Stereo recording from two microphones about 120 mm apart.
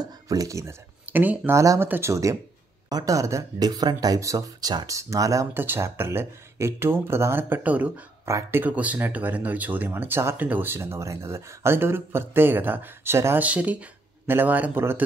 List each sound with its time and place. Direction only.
0.0 s speech: 30° right (ahead or behind); by 1.6 s 15° right (ahead or behind)
1.6 s speech: 25° right (ahead or behind)
8.3 s speech: 20° right (ahead or behind)